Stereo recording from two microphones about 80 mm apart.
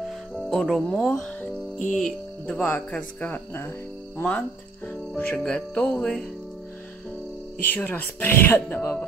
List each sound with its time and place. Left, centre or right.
0.0 s music: centre
2.0 s speech: centre
5.4 s music: centre
7.6 s speech: left